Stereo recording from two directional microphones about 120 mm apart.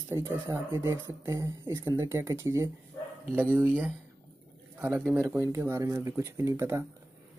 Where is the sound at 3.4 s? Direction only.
10° right (ahead or behind).